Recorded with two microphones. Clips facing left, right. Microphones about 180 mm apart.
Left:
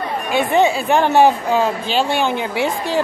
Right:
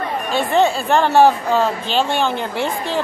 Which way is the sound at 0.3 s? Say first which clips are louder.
Left 1 dB; 15° left (ahead or behind).